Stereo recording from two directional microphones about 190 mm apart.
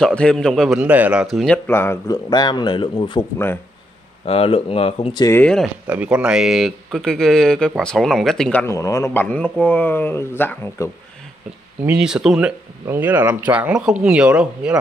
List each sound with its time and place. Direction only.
0.0 s a man's voice: 5° left (ahead or behind); by 3.3 s 25° left (ahead or behind)
4.3 s speech: 30° left (ahead or behind)
5.2 s a man's voice: 10° left (ahead or behind)
5.9 s speech: 10° right (ahead or behind); by 10.9 s 10° left (ahead or behind)
11.8 s speech: 5° right (ahead or behind)